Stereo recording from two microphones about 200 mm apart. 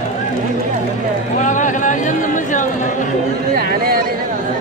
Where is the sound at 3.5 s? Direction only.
50° right (ahead or behind).